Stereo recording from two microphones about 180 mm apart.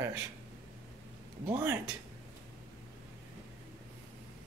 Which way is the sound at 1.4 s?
15° right (ahead or behind).